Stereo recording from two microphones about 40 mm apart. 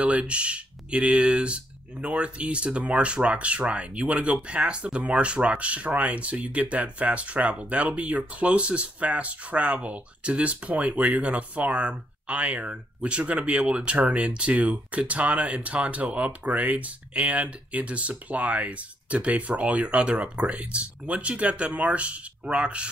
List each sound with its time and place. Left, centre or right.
0.0 s speech: right